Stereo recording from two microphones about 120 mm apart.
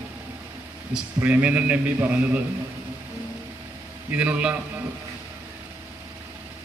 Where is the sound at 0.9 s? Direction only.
10° right (ahead or behind).